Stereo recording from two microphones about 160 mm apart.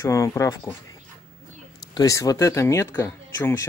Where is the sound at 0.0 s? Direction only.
20° left (ahead or behind).